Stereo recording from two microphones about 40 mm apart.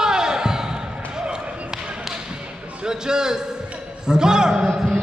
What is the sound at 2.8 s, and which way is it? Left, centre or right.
A man's voice, centre.